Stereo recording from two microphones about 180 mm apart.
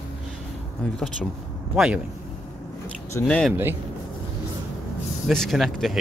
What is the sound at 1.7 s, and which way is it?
Speech, 5° right (ahead or behind).